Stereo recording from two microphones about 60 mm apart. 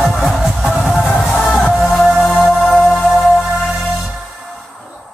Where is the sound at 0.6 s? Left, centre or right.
Centre.